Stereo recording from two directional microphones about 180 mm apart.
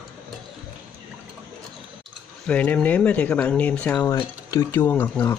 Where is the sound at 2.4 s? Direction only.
5° left (ahead or behind).